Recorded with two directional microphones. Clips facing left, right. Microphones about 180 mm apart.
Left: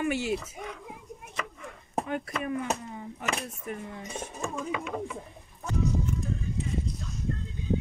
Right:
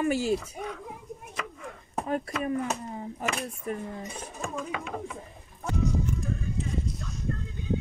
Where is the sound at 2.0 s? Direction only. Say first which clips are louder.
Right 7 dB; 35° right (ahead or behind).